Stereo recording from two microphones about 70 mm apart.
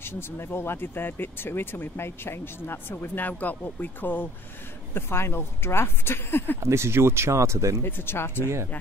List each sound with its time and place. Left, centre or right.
0.0 s speech: left
6.6 s speech: right
7.8 s speech: left